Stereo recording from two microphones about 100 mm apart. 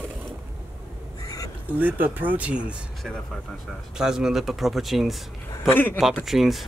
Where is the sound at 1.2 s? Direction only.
35° left (ahead or behind).